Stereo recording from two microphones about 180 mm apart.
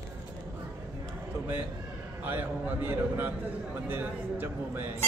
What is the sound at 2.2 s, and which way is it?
A man's voice, 10° right (ahead or behind).